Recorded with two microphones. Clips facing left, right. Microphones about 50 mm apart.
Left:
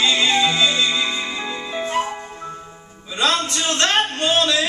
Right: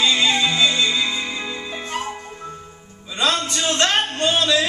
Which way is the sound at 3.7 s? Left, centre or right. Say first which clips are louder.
Left 1 dB; centre.